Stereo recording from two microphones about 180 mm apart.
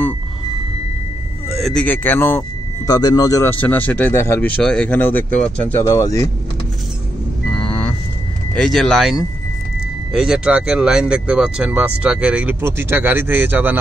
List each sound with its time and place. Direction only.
1.6 s speech: 5° left (ahead or behind)
5.9 s speech: 20° left (ahead or behind)
7.4 s vehicle: 5° left (ahead or behind)
8.5 s speech: centre (ahead or behind)